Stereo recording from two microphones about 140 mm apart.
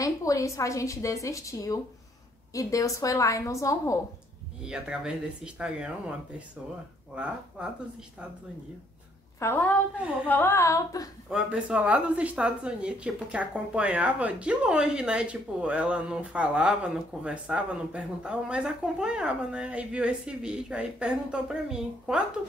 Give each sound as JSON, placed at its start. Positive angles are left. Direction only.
{"t": 0.0, "sound": "a woman's voice", "side_deg": 25}
{"t": 4.6, "sound": "a woman's voice", "side_deg": -5}
{"t": 7.6, "sound": "a woman's voice", "side_deg": -5}
{"t": 9.4, "sound": "a woman's voice", "side_deg": 15}
{"t": 11.2, "sound": "a woman's voice", "side_deg": -5}